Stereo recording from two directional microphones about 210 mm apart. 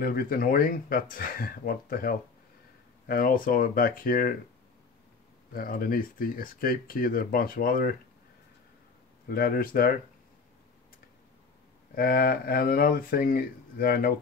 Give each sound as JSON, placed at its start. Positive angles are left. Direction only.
{"t": 0.0, "sound": "speech", "side_deg": 45}
{"t": 5.5, "sound": "speech", "side_deg": 40}
{"t": 9.3, "sound": "speech", "side_deg": 45}
{"t": 11.9, "sound": "speech", "side_deg": 45}